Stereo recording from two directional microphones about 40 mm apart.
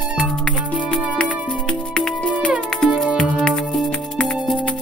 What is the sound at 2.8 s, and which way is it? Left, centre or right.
Music, centre.